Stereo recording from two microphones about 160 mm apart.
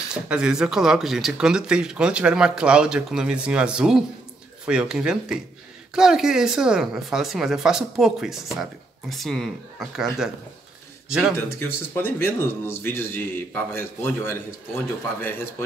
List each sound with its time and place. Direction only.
0.1 s speech: 5° right (ahead or behind)
11.1 s speech: 5° right (ahead or behind)
11.3 s speech: 15° left (ahead or behind)